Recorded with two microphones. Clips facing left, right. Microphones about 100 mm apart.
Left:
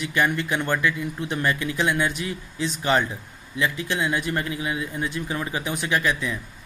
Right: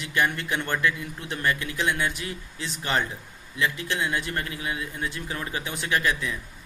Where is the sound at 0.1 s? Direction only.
20° left (ahead or behind).